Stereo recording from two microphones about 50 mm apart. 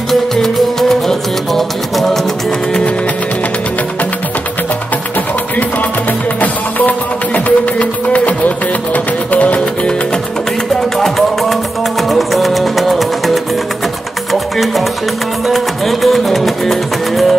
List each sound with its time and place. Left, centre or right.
0.1 s music: centre
6.4 s music: left
11.0 s music: centre